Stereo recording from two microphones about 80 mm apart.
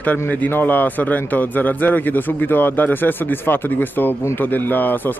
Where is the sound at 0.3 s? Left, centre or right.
Left.